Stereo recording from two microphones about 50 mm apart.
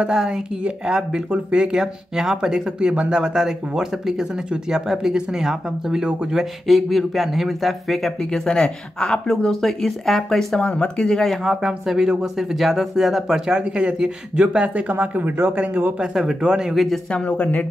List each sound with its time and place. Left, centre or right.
0.0 s speech: centre
8.2 s speech: centre
10.6 s speech: left
11.4 s speech: centre
14.7 s speech: right
15.5 s speech: right
16.0 s speech: centre
16.7 s speech: centre
17.1 s speech: left